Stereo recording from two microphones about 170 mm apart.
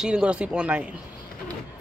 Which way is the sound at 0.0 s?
5° right (ahead or behind).